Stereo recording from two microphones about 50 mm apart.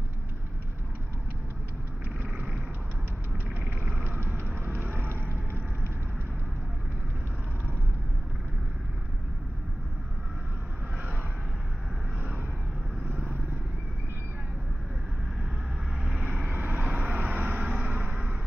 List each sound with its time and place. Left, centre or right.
2.2 s vehicle: right
4.0 s vehicle: right
16.5 s vehicle: right
16.8 s vehicle: right
18.0 s a sound: centre